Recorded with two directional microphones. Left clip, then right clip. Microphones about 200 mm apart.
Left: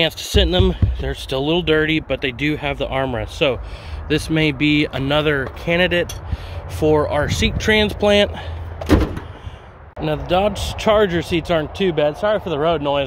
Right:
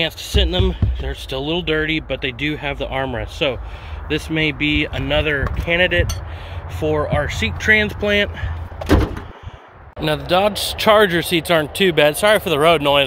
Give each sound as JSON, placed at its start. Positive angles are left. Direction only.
{"t": 0.0, "sound": "speech", "side_deg": 35}
{"t": 7.1, "sound": "speech", "side_deg": 20}
{"t": 9.9, "sound": "speech", "side_deg": 10}